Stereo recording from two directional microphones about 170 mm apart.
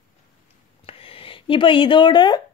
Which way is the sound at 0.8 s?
35° left (ahead or behind).